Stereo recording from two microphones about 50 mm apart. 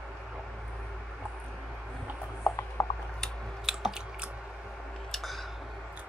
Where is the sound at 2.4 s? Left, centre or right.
Left.